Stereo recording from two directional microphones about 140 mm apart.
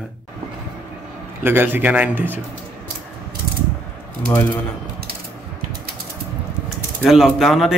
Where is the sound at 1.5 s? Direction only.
15° right (ahead or behind).